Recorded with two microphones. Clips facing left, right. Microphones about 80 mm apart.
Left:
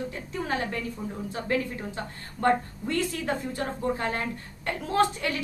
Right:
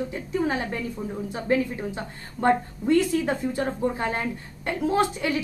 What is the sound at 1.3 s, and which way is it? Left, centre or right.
A woman's voice, centre.